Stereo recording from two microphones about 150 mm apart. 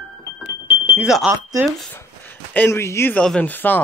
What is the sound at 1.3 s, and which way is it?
Speech, 20° right (ahead or behind).